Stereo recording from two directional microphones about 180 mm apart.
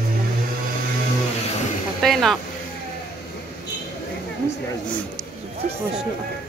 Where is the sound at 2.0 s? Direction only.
Centre (ahead or behind).